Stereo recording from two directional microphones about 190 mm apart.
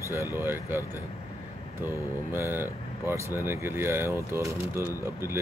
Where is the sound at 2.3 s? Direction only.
10° right (ahead or behind).